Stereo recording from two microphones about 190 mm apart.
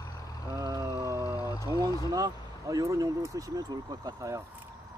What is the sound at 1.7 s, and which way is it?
Speech, 20° right (ahead or behind).